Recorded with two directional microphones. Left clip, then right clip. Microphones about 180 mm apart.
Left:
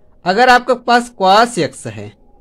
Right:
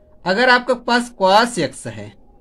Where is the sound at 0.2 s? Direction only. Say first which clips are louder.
Left 4 dB; 35° left (ahead or behind).